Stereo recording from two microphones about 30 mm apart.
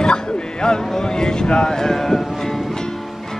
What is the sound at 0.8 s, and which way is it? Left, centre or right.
Speech, left.